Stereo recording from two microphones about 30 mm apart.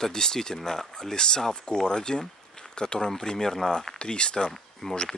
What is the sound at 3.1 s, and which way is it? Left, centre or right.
Speech, centre.